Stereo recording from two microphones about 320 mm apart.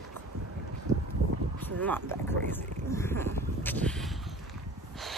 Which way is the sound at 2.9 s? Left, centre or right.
Centre.